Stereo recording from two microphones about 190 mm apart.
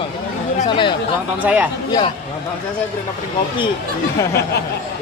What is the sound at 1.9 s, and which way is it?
Speech, 20° left (ahead or behind).